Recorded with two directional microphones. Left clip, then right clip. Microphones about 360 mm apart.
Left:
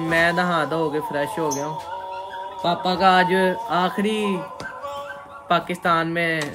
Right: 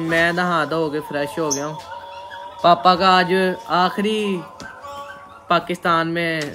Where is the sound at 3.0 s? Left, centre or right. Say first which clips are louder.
Right 1 dB; centre.